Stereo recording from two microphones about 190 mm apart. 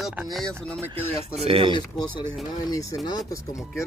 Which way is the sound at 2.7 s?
20° left (ahead or behind).